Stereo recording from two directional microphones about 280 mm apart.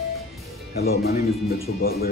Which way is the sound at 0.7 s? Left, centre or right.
Left.